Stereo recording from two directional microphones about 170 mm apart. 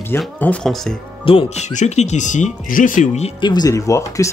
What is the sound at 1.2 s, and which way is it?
Speech, 35° left (ahead or behind).